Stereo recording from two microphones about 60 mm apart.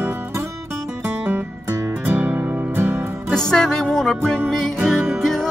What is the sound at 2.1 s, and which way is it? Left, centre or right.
Music, right.